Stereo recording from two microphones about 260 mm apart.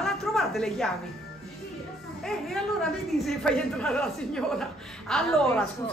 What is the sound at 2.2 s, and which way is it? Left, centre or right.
A man's voice, centre.